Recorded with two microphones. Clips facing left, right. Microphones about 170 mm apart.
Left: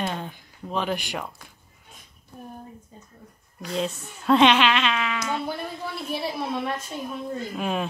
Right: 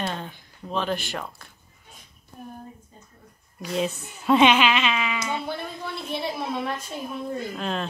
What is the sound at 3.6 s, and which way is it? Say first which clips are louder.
Speech: right 1 dB; 5° right (ahead or behind).